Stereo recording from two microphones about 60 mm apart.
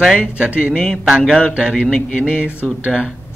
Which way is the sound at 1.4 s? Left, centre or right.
Centre.